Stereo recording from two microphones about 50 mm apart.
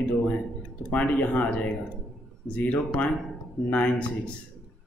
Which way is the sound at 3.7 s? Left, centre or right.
Left.